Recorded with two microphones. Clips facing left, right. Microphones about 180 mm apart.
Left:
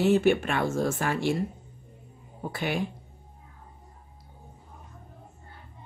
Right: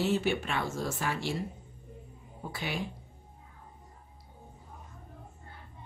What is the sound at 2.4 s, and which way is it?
Speech, 55° left (ahead or behind).